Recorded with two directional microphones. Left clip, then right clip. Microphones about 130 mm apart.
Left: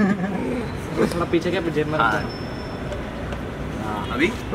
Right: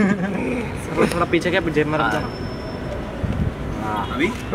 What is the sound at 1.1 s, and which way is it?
Speech, 40° right (ahead or behind).